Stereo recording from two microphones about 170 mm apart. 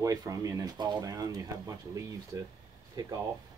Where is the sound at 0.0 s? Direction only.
20° right (ahead or behind).